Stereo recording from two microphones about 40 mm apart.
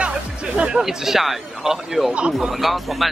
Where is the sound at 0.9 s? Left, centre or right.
Centre.